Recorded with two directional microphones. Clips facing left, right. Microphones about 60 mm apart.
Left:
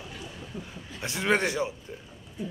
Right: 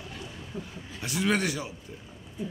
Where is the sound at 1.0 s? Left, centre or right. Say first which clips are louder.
Left 1 dB; left.